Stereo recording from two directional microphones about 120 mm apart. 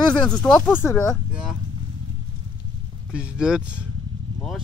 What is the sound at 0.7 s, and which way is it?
Speech, 20° left (ahead or behind).